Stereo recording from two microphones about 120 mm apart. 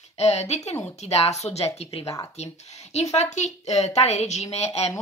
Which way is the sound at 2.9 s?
70° left (ahead or behind).